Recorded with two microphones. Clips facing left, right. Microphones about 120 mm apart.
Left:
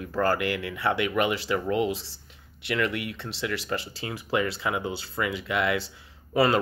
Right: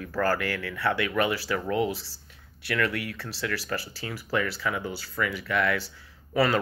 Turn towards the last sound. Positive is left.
turn(degrees=20)  # may be behind; listen again after turning